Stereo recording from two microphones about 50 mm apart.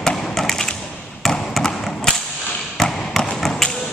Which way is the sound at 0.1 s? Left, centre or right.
Centre.